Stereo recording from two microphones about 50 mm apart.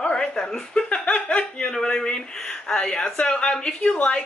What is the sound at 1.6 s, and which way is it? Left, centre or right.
Speech, centre.